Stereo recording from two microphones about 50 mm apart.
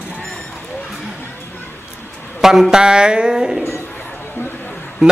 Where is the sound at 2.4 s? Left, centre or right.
Centre.